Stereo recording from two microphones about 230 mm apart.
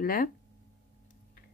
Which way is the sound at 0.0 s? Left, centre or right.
Left.